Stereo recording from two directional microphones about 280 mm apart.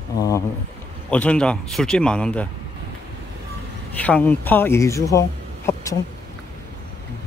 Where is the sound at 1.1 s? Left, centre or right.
Centre.